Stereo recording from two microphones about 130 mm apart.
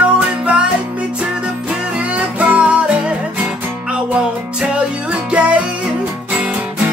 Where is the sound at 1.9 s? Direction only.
10° right (ahead or behind).